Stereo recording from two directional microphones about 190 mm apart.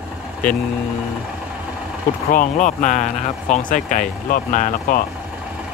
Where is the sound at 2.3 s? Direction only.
45° left (ahead or behind).